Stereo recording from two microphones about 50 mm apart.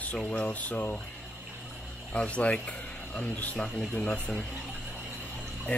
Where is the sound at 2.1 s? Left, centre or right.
Left.